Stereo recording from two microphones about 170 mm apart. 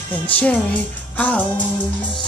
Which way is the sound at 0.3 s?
10° left (ahead or behind).